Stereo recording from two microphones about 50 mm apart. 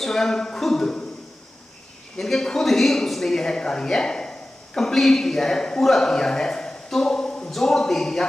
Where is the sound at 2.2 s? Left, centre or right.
Centre.